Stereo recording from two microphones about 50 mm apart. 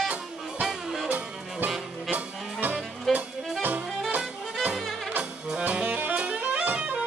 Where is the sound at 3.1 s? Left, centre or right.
Right.